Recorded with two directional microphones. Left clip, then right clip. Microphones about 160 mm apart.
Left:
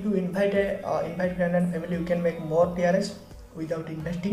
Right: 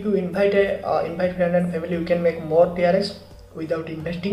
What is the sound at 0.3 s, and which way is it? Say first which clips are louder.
Speech: right 6 dB; 15° right (ahead or behind).